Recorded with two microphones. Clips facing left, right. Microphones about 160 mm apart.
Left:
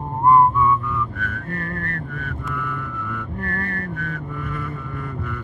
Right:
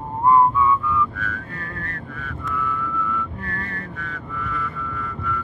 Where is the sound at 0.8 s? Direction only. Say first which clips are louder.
Right 3 dB; 55° left (ahead or behind).